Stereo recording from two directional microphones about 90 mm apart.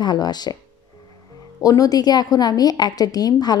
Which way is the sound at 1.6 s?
40° left (ahead or behind).